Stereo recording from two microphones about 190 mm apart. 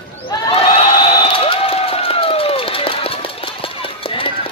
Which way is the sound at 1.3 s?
30° left (ahead or behind).